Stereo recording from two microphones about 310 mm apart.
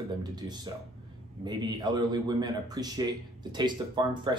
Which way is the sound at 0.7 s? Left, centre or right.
Centre.